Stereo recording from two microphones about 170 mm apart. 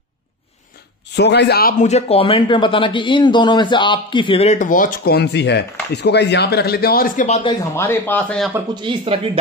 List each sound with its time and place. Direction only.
1.1 s a man's voice: 85° left; by 1.9 s 60° left (ahead or behind)
1.9 s speech: 40° left (ahead or behind); by 7.2 s 60° left (ahead or behind)
7.2 s speech: 40° left (ahead or behind)
7.7 s speech: 15° left (ahead or behind)
8.8 s speech: 35° right (ahead or behind)